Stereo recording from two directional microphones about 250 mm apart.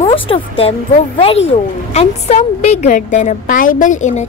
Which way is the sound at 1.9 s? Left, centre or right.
Left.